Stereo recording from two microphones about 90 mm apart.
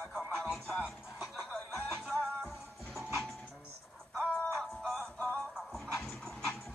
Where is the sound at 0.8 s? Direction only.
10° right (ahead or behind).